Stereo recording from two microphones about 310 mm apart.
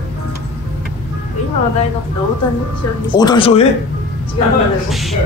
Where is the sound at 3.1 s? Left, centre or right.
Centre.